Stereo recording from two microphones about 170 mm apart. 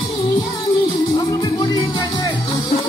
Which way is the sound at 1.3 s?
25° left (ahead or behind).